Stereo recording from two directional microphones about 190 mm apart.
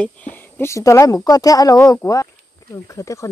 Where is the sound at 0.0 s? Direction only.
10° left (ahead or behind).